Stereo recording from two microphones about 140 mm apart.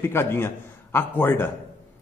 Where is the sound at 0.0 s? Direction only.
15° left (ahead or behind).